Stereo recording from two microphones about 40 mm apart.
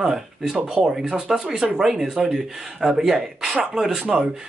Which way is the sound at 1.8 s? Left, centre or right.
Centre.